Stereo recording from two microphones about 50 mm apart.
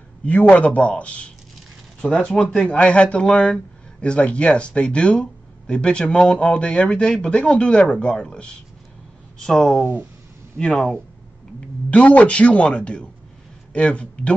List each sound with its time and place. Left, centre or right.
0.2 s speech: left
9.4 s speech: centre
11.9 s speech: left